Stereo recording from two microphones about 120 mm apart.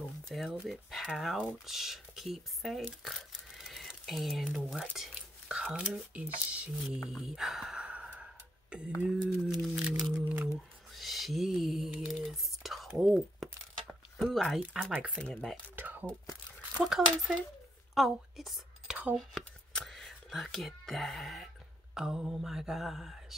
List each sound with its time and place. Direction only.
0.3 s speech: centre (ahead or behind)
10.1 s speech: 15° right (ahead or behind)
11.0 s a sound: centre (ahead or behind)
14.2 s speech: centre (ahead or behind)
14.9 s speech: 10° right (ahead or behind)
15.1 s cutlery: 5° left (ahead or behind)
15.7 s speech: 15° right (ahead or behind)
16.8 s speech: 5° right (ahead or behind)
17.9 s a sound: centre (ahead or behind)
19.1 s speech: 5° left (ahead or behind)